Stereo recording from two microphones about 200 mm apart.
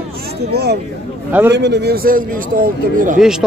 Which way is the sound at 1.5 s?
55° right (ahead or behind).